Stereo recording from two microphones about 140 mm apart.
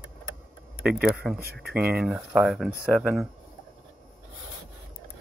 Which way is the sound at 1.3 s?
90° right.